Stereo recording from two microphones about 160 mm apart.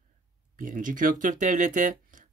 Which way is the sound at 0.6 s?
55° right (ahead or behind).